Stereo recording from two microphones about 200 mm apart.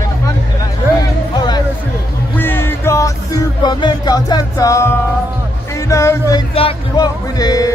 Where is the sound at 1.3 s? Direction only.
20° left (ahead or behind).